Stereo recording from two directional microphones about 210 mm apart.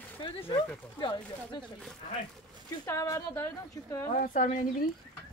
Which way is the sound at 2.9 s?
15° left (ahead or behind).